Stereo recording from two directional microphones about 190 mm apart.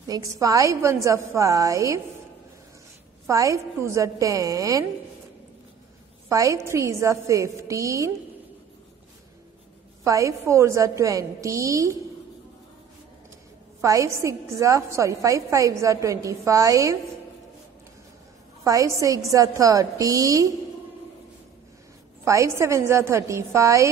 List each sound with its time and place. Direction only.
0.0 s a woman's voice: 20° right (ahead or behind)
3.3 s a woman's voice: 15° right (ahead or behind)
6.2 s a woman's voice: 15° right (ahead or behind)
10.0 s a woman's voice: 15° right (ahead or behind)
13.7 s a woman's voice: 15° right (ahead or behind)
18.6 s a woman's voice: 20° right (ahead or behind)
22.2 s a woman's voice: 15° right (ahead or behind)